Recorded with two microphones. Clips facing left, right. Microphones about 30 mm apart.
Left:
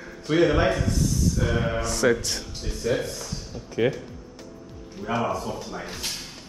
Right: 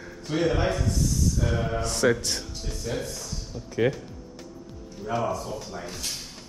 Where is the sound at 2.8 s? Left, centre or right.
Left.